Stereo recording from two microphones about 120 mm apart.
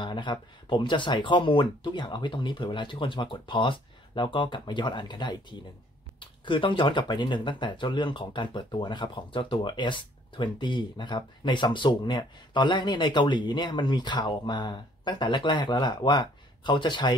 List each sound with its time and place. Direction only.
0.0 s speech: 40° left (ahead or behind)